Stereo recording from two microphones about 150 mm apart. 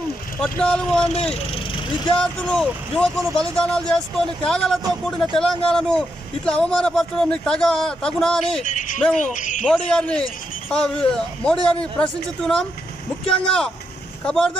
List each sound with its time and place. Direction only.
0.4 s speech: 5° left (ahead or behind)
1.1 s speech: 45° left (ahead or behind)
2.1 s speech: 5° left (ahead or behind)
8.6 s a sound: 60° left (ahead or behind)
9.3 s speech: 55° left (ahead or behind)
9.7 s speech: 5° left (ahead or behind)